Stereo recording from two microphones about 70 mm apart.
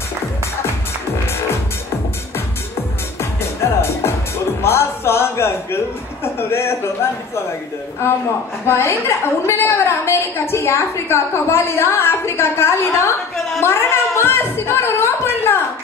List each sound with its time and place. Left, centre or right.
4.6 s a woman's voice: left
8.6 s a woman's voice: left
13.6 s speech: left